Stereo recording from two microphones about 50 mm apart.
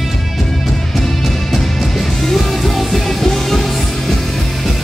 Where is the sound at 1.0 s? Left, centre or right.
Centre.